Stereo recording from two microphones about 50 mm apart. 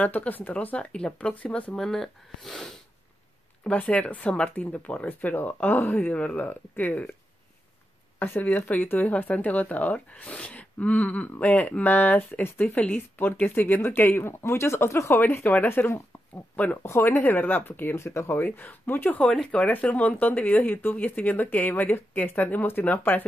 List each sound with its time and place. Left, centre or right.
0.0 s speech: left
0.7 s speech: left
1.8 s speech: centre
3.7 s speech: left
5.0 s speech: left
8.4 s speech: left
17.2 s speech: left
17.9 s speech: left
18.3 s speech: left
19.2 s speech: centre
19.7 s speech: left